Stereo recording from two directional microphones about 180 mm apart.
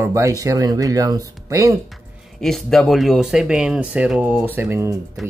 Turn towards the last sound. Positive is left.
turn(degrees=-15)  # may be behind; listen again after turning